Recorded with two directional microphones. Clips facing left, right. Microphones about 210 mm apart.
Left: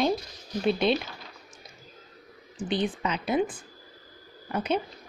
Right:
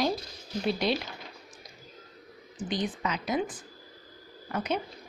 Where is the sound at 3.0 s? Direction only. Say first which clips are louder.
Left 3 dB; 25° left (ahead or behind).